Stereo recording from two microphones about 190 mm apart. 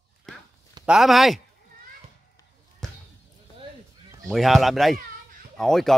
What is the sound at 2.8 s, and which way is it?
Basketball bounce, 5° left (ahead or behind).